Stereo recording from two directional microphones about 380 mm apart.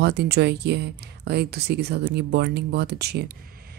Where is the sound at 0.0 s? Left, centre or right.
Right.